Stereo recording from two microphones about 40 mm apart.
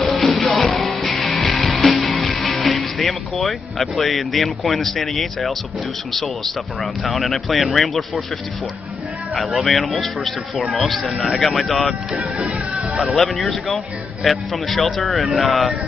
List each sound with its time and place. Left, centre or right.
0.0 s music: centre
6.1 s speech: centre
9.6 s speech: centre
12.2 s music: right
13.1 s speech: centre